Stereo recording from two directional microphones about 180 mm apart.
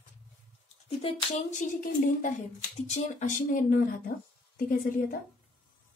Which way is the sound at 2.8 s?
40° left (ahead or behind).